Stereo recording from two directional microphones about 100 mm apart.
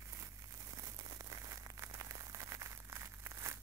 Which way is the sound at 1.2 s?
35° right (ahead or behind).